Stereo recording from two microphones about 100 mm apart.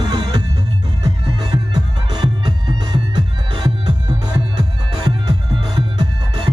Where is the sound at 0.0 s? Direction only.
50° right (ahead or behind).